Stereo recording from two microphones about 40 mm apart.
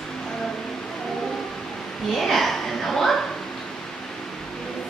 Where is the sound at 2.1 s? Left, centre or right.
Centre.